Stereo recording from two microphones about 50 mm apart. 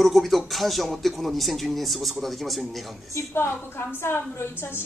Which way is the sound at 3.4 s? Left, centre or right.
Left.